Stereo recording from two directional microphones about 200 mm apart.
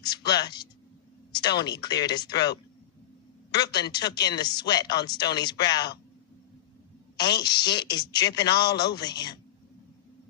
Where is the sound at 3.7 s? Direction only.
20° left (ahead or behind).